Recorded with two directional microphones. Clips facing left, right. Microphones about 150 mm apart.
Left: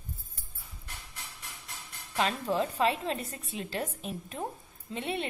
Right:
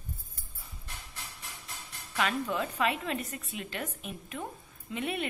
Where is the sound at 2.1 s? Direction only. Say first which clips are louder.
Left 2 dB; 30° left (ahead or behind).